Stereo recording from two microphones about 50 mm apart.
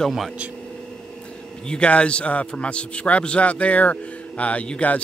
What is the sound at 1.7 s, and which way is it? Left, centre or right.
Speech, left.